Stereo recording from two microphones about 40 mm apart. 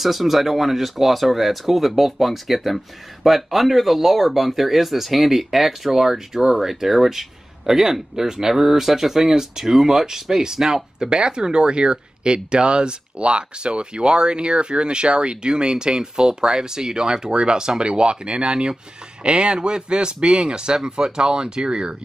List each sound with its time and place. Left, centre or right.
0.0 s speech: centre; by 21.9 s right